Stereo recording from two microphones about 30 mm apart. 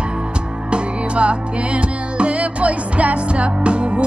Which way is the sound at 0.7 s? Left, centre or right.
Right.